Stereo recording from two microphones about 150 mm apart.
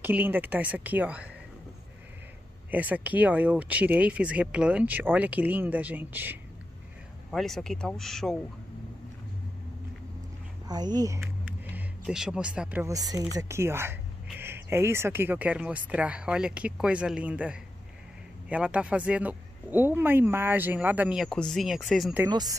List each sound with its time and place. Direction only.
0.0 s speech: 15° right (ahead or behind)
2.7 s speech: 10° right (ahead or behind)
7.2 s speech: centre (ahead or behind)
10.7 s speech: 25° right (ahead or behind)
11.7 s speech: 5° right (ahead or behind)
12.8 s speech: 25° right (ahead or behind); by 22.1 s centre (ahead or behind)
22.3 s speech: 25° right (ahead or behind)